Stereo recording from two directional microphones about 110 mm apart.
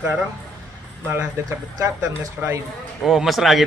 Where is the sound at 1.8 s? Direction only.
25° right (ahead or behind).